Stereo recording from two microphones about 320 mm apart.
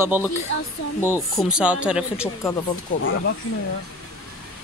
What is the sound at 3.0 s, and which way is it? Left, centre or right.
Speech, left.